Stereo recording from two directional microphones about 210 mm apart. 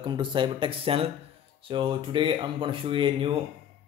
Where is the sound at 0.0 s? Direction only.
20° right (ahead or behind).